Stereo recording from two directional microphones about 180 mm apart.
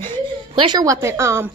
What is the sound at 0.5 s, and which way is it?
Speech, 25° right (ahead or behind).